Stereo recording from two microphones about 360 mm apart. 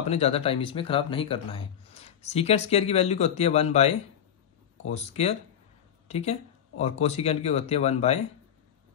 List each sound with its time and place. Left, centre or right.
0.0 s speech: centre